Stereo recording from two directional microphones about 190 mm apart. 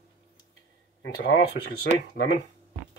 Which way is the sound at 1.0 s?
65° left (ahead or behind).